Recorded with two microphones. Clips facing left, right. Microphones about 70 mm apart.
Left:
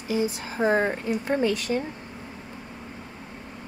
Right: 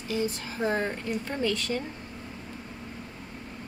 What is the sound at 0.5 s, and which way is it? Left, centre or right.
Speech, left.